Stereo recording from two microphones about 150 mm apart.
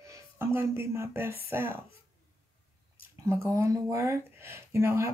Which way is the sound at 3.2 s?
15° right (ahead or behind).